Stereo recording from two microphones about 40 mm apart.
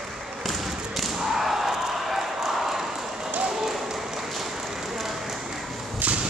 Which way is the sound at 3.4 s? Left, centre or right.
Centre.